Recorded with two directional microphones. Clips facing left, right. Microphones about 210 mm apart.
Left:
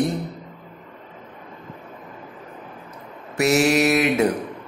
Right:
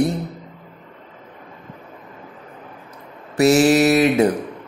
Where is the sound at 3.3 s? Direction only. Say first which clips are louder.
Right 4 dB; 35° right (ahead or behind).